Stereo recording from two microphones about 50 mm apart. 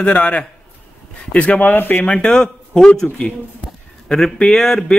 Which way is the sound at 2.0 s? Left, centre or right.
Left.